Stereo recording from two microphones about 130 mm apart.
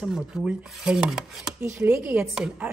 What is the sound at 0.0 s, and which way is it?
A woman's voice, 5° right (ahead or behind).